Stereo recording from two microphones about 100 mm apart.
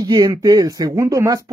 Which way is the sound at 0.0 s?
45° right (ahead or behind).